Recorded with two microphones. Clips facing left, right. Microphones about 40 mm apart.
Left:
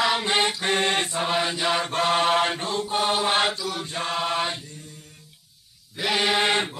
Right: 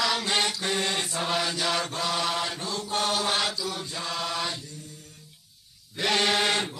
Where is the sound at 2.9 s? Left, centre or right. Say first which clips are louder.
Left 3 dB; left.